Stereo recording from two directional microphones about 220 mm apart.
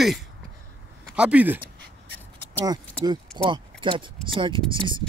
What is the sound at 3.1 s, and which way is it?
Speech, 20° right (ahead or behind).